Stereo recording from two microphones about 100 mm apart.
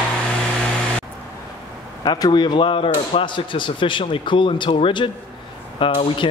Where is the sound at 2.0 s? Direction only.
45° left (ahead or behind); by 6.3 s 60° left (ahead or behind).